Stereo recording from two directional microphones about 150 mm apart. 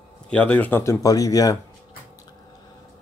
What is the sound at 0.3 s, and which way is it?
Speech, 10° left (ahead or behind).